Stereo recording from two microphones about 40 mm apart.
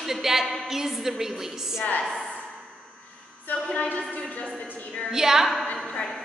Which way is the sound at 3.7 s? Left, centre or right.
Left.